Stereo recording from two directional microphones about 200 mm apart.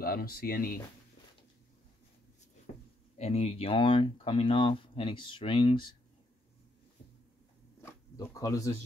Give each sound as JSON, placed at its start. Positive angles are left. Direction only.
{"t": 0.0, "sound": "speech", "side_deg": 50}
{"t": 3.2, "sound": "speech", "side_deg": 30}
{"t": 7.8, "sound": "zipper", "side_deg": 15}